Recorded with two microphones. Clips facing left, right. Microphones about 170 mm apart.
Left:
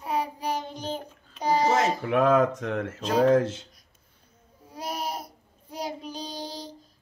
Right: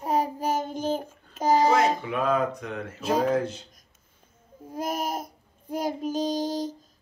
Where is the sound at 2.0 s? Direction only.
85° left.